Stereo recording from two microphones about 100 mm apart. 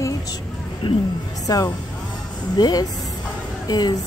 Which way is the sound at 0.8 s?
55° left (ahead or behind).